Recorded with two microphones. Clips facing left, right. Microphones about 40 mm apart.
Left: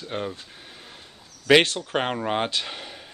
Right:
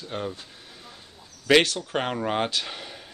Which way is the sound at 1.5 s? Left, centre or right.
Left.